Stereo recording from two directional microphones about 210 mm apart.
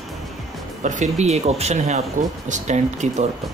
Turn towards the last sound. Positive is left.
turn(degrees=-35)  # may be behind; listen again after turning